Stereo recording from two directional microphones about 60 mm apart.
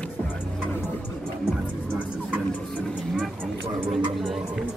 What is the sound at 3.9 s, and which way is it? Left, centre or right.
Music, centre.